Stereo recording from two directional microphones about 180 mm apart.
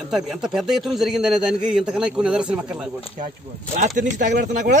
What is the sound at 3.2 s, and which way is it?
Speech, 45° right (ahead or behind).